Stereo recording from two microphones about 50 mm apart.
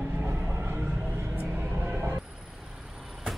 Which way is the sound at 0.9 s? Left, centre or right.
Right.